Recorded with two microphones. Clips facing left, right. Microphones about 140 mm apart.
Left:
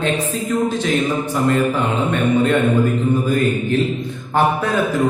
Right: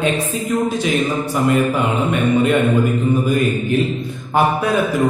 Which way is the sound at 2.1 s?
15° right (ahead or behind).